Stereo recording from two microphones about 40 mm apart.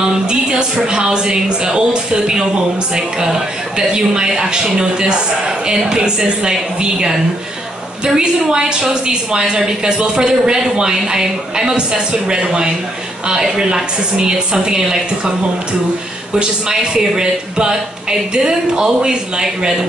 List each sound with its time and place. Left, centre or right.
0.3 s a woman's voice: right
16.3 s a woman's voice: centre